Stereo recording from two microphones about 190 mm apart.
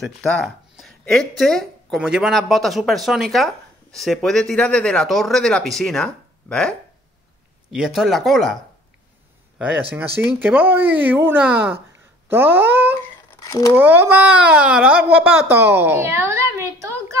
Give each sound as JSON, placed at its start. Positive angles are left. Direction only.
{"t": 0.0, "sound": "speech", "side_deg": 0}
{"t": 7.7, "sound": "speech", "side_deg": 0}
{"t": 9.6, "sound": "speech", "side_deg": -10}
{"t": 12.3, "sound": "a sound", "side_deg": -10}
{"t": 13.4, "sound": "a sound", "side_deg": 15}
{"t": 13.7, "sound": "a woman's voice", "side_deg": -10}